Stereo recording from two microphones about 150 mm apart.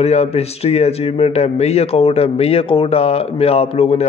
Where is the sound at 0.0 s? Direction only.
45° left (ahead or behind).